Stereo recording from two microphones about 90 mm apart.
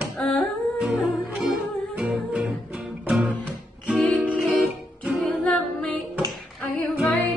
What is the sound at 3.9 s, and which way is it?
Music, 10° left (ahead or behind).